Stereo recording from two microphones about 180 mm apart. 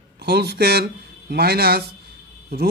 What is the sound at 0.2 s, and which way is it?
Speech, 65° right (ahead or behind).